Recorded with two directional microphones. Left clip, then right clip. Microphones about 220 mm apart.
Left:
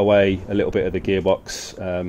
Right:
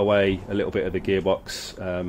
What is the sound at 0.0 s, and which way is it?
Speech, 20° left (ahead or behind).